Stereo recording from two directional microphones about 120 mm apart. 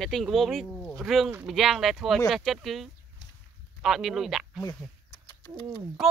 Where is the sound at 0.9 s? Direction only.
Centre (ahead or behind).